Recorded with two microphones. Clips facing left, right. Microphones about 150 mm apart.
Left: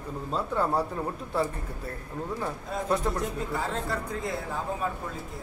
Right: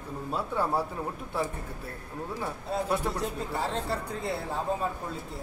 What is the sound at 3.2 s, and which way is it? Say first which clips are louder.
Speech: left 1 dB; 30° right (ahead or behind).